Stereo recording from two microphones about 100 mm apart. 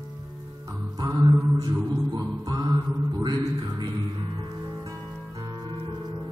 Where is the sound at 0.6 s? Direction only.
40° right (ahead or behind).